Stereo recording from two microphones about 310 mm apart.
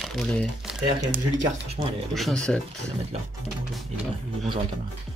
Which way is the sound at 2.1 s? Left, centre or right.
Centre.